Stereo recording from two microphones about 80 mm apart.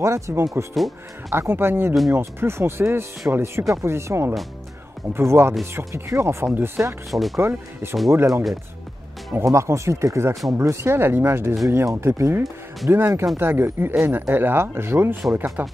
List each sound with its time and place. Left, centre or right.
0.0 s speech: right
7.1 s speech: centre
7.3 s speech: right